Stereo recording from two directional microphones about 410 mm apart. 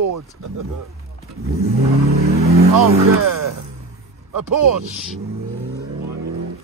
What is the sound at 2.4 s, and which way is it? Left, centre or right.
Vehicle, right.